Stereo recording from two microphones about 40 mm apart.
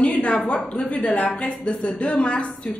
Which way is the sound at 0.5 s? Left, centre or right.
Left.